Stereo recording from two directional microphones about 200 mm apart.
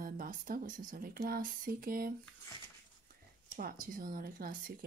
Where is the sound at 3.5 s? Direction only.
45° right (ahead or behind).